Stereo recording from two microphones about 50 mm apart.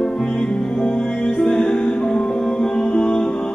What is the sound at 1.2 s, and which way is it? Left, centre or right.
Music, centre.